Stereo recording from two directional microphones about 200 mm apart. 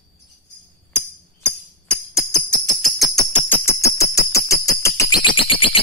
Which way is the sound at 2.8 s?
Centre (ahead or behind).